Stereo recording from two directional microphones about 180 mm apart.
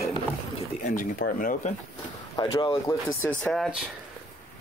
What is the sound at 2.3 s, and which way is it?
Speech, 25° left (ahead or behind).